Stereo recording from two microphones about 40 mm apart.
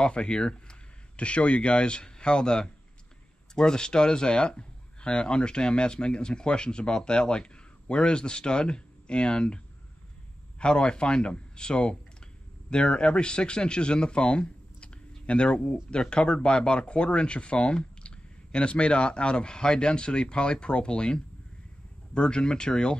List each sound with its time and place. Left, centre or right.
0.0 s speech: left
1.1 s speech: left
10.6 s speech: left